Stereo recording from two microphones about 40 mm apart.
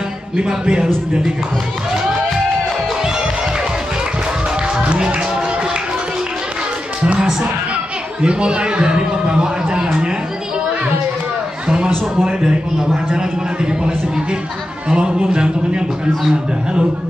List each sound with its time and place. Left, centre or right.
0.4 s a man's voice: right
4.7 s music: right
8.2 s a man's voice: right
11.6 s a man's voice: right